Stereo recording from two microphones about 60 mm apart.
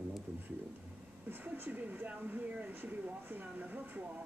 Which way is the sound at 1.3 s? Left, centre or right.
Right.